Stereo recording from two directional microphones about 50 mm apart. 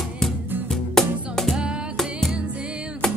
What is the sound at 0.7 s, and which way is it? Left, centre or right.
Music, centre.